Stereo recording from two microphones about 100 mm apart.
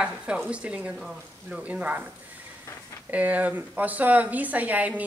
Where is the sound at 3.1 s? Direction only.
15° right (ahead or behind).